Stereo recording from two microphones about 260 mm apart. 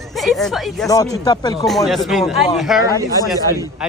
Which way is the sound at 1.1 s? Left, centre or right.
Centre.